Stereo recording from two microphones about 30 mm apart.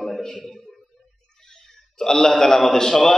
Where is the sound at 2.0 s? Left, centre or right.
Centre.